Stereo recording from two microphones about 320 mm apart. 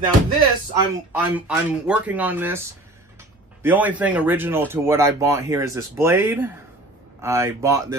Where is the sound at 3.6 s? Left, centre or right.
Centre.